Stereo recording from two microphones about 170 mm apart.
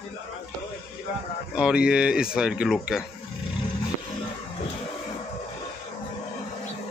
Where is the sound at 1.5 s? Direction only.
5° right (ahead or behind).